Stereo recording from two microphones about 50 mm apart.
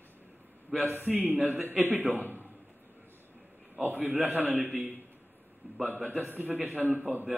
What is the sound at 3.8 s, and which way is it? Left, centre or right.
Speech, right.